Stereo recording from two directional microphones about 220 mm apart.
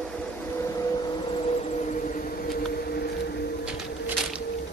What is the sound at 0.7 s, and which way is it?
Vehicle, 15° left (ahead or behind).